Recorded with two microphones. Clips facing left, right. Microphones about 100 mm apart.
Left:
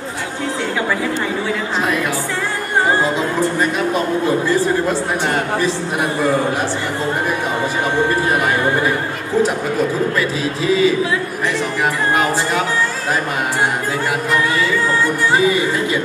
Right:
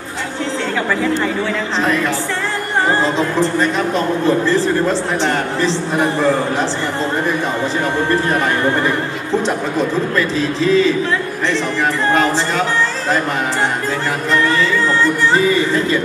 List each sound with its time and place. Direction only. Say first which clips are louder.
3.0 s a man's voice: right 1 dB; 10° left (ahead or behind)
5.2 s a man's voice: right 1 dB; 10° left (ahead or behind)
10.1 s a man's voice: right 2 dB; 10° left (ahead or behind)
12.1 s a man's voice: right 2 dB; 10° left (ahead or behind)
15.3 s a man's voice: left 1 dB; 10° left (ahead or behind)